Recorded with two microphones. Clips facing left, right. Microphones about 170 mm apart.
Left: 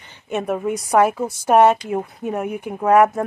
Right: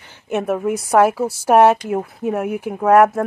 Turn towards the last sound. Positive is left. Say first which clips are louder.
# right 2 dB
turn(degrees=0)  # may be behind; listen again after turning